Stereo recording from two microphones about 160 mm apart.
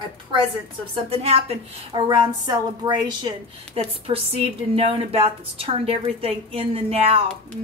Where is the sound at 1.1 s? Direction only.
40° right (ahead or behind).